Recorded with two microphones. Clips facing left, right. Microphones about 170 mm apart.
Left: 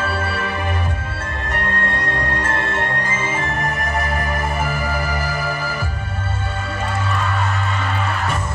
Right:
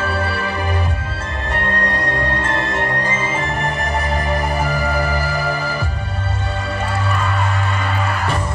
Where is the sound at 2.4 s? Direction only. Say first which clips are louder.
Right 2 dB; 25° right (ahead or behind).